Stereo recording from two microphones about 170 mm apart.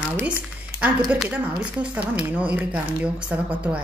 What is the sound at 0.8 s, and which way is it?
A woman's voice, 5° right (ahead or behind).